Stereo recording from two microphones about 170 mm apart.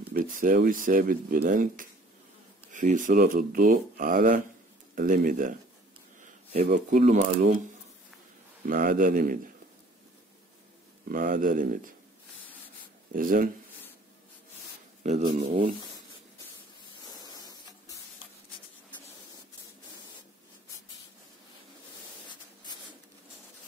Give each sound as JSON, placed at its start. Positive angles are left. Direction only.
{"t": 0.2, "sound": "speech", "side_deg": -55}
{"t": 6.6, "sound": "speech", "side_deg": -50}
{"t": 8.6, "sound": "speech", "side_deg": -55}
{"t": 11.1, "sound": "speech", "side_deg": -55}
{"t": 13.1, "sound": "speech", "side_deg": -55}
{"t": 15.2, "sound": "speech", "side_deg": -30}